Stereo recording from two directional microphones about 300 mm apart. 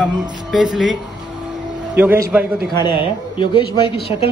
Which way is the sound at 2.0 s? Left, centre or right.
Centre.